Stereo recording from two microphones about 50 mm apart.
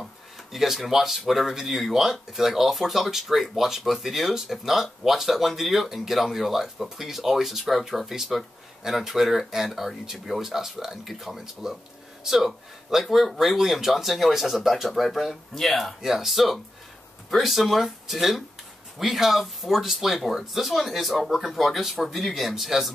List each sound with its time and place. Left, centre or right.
0.5 s speech: centre
16.0 s speech: centre